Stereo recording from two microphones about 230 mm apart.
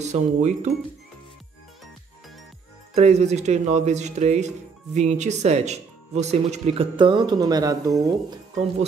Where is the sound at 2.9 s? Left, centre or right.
Right.